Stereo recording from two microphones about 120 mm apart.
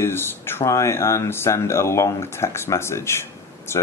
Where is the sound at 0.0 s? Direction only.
20° left (ahead or behind).